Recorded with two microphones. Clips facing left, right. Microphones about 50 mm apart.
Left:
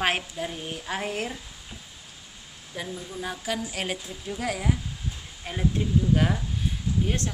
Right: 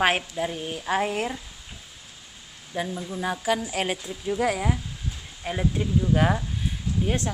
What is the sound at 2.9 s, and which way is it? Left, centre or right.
Speech, right.